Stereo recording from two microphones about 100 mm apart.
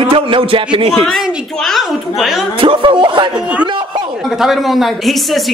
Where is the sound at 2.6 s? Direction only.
60° right (ahead or behind).